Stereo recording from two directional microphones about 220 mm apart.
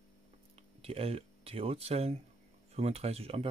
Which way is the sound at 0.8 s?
25° right (ahead or behind).